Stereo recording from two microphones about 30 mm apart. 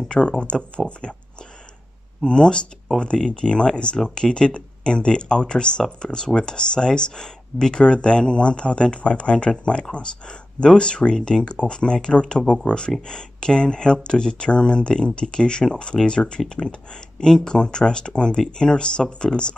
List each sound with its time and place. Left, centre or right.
0.2 s speech: left
0.7 s speech: left
2.2 s speech: left
3.9 s speech: left